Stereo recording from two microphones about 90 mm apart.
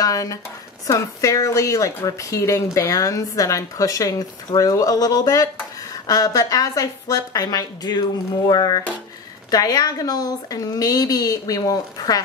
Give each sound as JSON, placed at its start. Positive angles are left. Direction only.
{"t": 0.0, "sound": "a woman's voice", "side_deg": 40}